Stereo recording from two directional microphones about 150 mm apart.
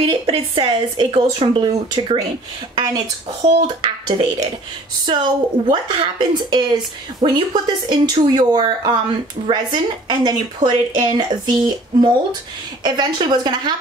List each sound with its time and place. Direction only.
0.0 s a woman's voice: 40° right (ahead or behind)
5.7 s speech: 30° right (ahead or behind)